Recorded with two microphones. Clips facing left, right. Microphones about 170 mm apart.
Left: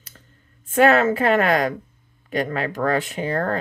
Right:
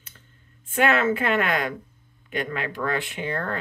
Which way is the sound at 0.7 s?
40° left (ahead or behind).